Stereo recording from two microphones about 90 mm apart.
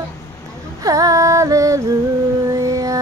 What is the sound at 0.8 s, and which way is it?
Female singing, 40° right (ahead or behind).